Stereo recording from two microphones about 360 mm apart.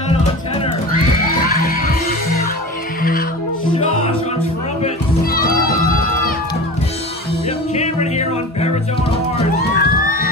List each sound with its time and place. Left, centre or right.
1.3 s music: left
3.0 s music: left
4.8 s children playing: left
7.8 s music: centre